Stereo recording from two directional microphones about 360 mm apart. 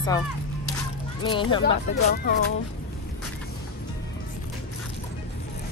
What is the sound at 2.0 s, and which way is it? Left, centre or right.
Speech, left.